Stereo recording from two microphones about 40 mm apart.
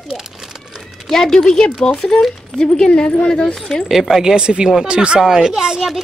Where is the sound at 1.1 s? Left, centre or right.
Centre.